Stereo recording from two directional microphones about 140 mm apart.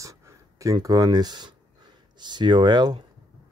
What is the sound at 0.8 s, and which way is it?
Speech, 30° right (ahead or behind).